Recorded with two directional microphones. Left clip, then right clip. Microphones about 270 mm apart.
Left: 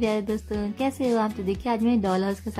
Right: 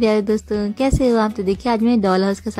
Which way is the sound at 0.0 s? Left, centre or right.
Centre.